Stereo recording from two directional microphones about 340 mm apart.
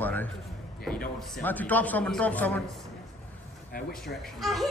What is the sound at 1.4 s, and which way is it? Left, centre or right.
A man's voice, centre.